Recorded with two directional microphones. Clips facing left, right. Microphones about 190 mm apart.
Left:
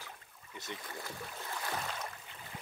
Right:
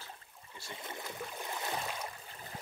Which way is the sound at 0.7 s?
25° right (ahead or behind).